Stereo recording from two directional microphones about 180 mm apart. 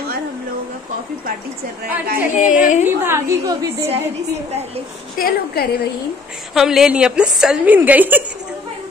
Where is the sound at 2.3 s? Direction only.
45° left (ahead or behind).